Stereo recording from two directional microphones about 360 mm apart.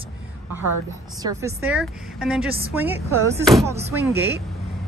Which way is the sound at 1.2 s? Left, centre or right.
Centre.